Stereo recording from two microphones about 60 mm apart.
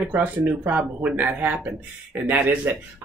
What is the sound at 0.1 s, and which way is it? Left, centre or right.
Speech, right.